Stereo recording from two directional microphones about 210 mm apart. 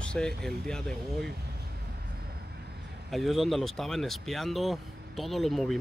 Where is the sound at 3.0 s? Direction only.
Centre (ahead or behind).